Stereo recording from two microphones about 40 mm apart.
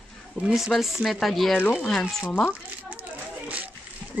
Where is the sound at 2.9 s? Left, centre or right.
Right.